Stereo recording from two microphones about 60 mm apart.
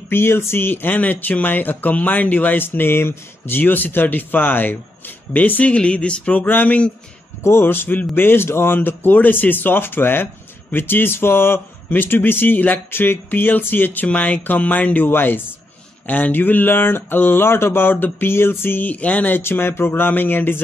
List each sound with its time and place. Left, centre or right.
0.1 s speech: left
7.4 s speech: left